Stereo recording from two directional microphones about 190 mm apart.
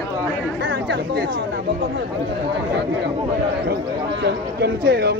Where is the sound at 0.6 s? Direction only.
65° right (ahead or behind).